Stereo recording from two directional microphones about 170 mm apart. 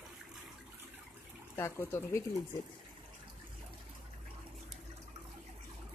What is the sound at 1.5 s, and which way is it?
Speech, 15° left (ahead or behind).